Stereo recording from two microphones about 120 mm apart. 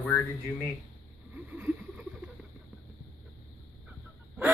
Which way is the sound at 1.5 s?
10° right (ahead or behind).